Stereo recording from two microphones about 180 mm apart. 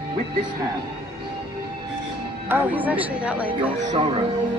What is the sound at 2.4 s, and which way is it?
A woman's voice, 10° right (ahead or behind).